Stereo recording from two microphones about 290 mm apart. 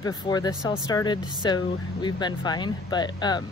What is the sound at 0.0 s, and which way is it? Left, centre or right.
Speech, centre.